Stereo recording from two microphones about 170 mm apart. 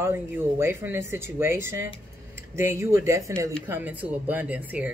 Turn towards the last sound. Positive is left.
turn(degrees=-10)  # may be behind; listen again after turning